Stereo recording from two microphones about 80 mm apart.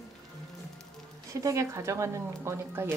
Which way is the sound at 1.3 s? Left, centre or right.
Right.